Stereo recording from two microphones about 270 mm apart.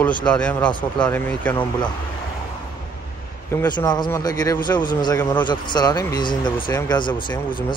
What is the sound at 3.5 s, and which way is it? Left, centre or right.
Speech, centre.